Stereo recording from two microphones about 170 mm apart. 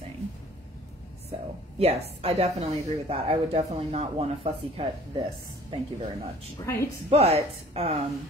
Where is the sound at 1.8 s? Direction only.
35° right (ahead or behind).